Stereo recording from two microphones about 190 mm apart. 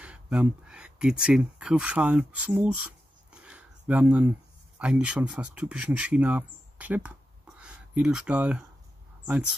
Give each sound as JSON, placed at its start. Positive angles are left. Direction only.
{"t": 0.0, "sound": "speech", "side_deg": -5}